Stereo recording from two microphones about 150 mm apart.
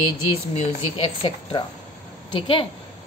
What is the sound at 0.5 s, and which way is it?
A woman's voice, 35° left (ahead or behind).